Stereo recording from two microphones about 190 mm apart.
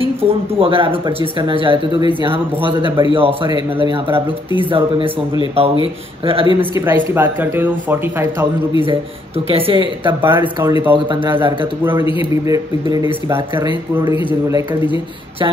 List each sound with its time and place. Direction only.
0.0 s a man's voice: 30° right (ahead or behind)
5.6 s a man's voice: 30° right (ahead or behind)
7.2 s a man's voice: 10° right (ahead or behind)
9.5 s a man's voice: 25° right (ahead or behind)
10.2 s a man's voice: 10° right (ahead or behind)